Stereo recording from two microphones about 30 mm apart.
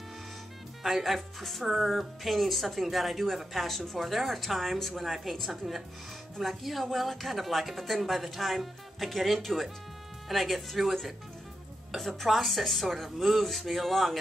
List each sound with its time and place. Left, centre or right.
0.8 s speech: centre
6.4 s speech: centre